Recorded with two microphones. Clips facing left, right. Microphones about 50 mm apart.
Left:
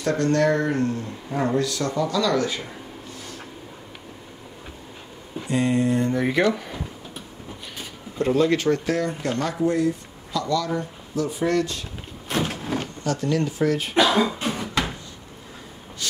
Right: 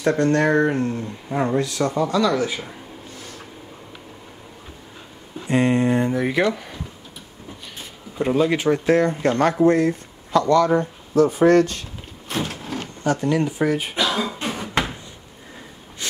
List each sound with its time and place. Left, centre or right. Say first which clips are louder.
0.0 s speech: right 2 dB; right
5.5 s a sound: right 3 dB; right
6.1 s speech: right 1 dB; centre
8.2 s speech: right 1 dB; centre
8.8 s speech: right 7 dB; right
12.3 s sliding door: left 1 dB; centre
13.0 s speech: right 5 dB; right
14.6 s a sound: right 4 dB; right
16.0 s a sound: right 1 dB; right